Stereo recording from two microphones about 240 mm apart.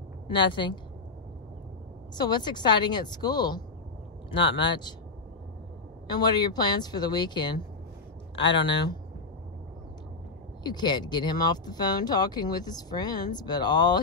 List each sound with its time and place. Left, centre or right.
0.3 s speech: centre
2.1 s speech: centre
6.0 s speech: centre
10.6 s speech: centre